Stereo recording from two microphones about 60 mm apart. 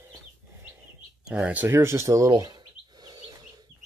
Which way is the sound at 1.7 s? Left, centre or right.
Right.